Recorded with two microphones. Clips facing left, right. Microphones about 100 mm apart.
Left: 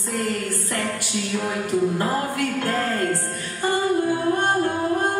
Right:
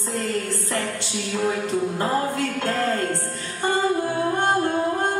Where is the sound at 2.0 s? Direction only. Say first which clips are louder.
Even; 25° right (ahead or behind).